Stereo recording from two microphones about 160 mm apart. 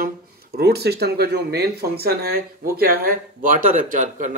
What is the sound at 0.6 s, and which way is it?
Speech, 85° right.